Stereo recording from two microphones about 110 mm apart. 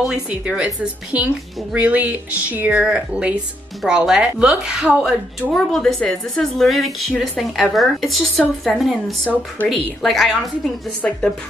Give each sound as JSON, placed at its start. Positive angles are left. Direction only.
{"t": 0.0, "sound": "speech", "side_deg": -10}
{"t": 5.5, "sound": "a woman's voice", "side_deg": 5}